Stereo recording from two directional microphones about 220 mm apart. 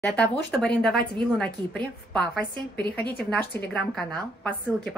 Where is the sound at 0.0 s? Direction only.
5° left (ahead or behind).